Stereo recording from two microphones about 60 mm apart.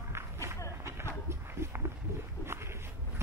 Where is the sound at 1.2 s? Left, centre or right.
Right.